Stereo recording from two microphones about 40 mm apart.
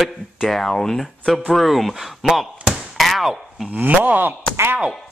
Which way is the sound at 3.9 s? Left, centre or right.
Right.